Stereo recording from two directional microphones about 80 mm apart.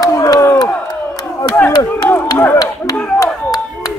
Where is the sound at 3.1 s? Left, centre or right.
Left.